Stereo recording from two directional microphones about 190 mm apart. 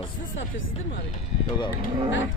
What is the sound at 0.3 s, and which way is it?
Speech, 90° left.